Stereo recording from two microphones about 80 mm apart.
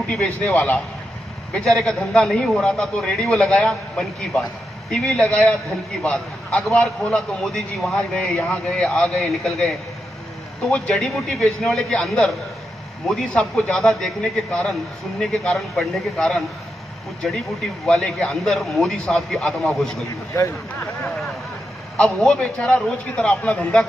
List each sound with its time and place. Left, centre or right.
0.0 s a man's voice: centre
11.1 s a man's voice: centre
21.9 s a man's voice: centre